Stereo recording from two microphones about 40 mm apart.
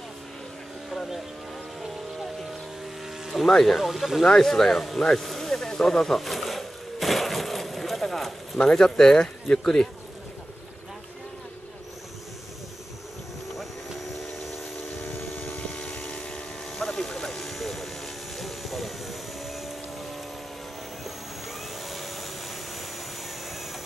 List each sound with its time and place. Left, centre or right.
0.8 s vehicle: centre
3.3 s speech: centre
4.2 s speech: centre
5.7 s a sound: centre
8.5 s speech: centre
15.8 s vehicle: left
16.7 s vehicle: centre
21.8 s vacuum cleaner: centre